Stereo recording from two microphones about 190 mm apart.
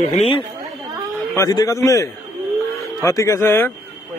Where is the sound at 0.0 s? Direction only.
35° left (ahead or behind).